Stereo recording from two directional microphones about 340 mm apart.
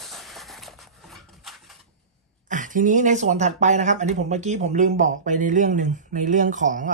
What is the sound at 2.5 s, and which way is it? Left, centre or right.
Speech, right.